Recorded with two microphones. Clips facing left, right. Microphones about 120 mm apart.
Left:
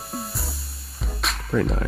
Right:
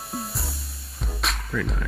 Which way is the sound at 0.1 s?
Centre (ahead or behind).